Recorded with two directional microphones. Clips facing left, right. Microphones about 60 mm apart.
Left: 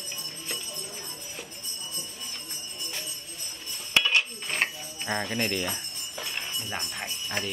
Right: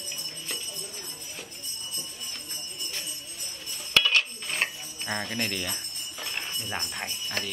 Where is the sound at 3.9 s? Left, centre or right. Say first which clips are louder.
Even; centre.